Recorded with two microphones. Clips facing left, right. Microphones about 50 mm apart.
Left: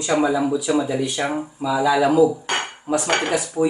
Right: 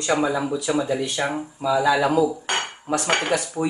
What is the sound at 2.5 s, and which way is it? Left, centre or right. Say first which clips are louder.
Dishes: left 2 dB; centre.